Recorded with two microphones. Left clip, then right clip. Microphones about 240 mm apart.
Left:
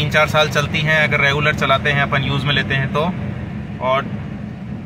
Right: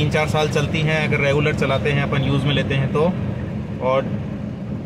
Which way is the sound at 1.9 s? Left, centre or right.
Left.